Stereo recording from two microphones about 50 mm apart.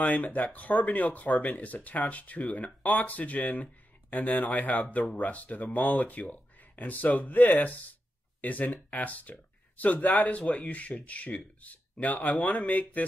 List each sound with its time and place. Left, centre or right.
0.0 s speech: left